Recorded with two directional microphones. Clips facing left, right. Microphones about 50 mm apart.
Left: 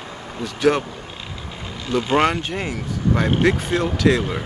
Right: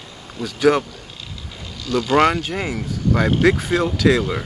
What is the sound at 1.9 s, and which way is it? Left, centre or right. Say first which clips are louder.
Speech: right 2 dB; left.